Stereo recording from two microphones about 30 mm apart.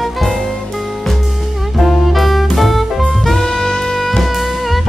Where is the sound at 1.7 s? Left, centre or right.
Centre.